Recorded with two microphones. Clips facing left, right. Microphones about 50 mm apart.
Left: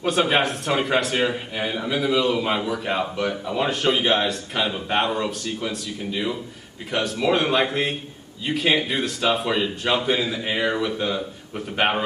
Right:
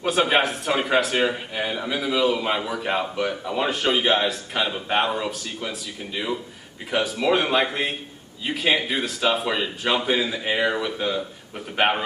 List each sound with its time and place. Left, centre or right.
0.0 s a man's voice: centre